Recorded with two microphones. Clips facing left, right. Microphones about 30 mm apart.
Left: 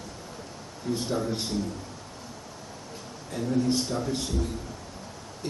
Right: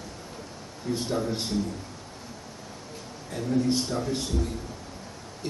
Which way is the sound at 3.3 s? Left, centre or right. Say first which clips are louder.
Even; centre.